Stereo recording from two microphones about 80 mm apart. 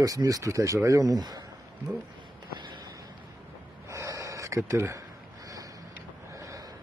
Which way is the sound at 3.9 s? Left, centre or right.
Right.